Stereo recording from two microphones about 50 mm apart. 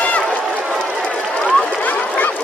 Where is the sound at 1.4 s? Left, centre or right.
Left.